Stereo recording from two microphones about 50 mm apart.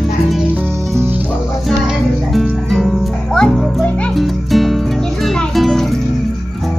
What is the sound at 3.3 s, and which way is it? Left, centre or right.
Music, centre.